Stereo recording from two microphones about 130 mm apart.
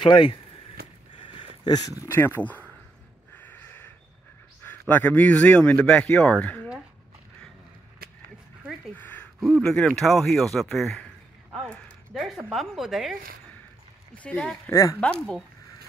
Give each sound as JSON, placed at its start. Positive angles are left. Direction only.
{"t": 0.0, "sound": "speech", "side_deg": 35}
{"t": 1.6, "sound": "speech", "side_deg": 30}
{"t": 3.6, "sound": "a sound", "side_deg": 15}
{"t": 4.6, "sound": "speech", "side_deg": 10}
{"t": 8.9, "sound": "a sound", "side_deg": 10}
{"t": 9.4, "sound": "speech", "side_deg": 0}
{"t": 14.1, "sound": "speech", "side_deg": 10}
{"t": 14.7, "sound": "speech", "side_deg": 25}
{"t": 15.0, "sound": "speech", "side_deg": 5}